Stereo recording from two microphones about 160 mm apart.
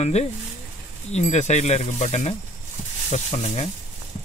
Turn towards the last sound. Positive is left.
turn(degrees=40)  # may be behind; listen again after turning